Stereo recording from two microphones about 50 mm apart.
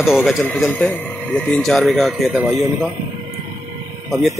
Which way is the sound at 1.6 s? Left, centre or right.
Centre.